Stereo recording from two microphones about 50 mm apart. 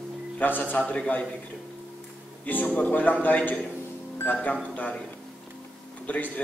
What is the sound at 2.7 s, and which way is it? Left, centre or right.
Speech, left.